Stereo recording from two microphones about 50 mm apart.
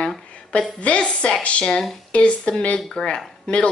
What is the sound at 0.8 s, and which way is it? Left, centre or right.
A woman's voice, left.